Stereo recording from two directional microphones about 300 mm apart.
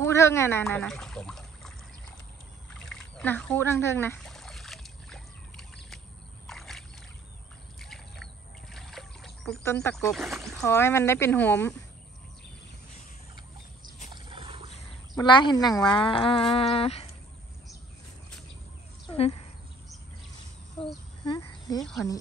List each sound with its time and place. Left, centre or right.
0.0 s speech: centre
2.7 s a sound: centre
6.4 s rowboat: centre
7.8 s bird: centre
8.7 s speech: centre
14.1 s a sound: centre
15.1 s speech: centre
19.0 s a sound: centre
20.8 s speech: centre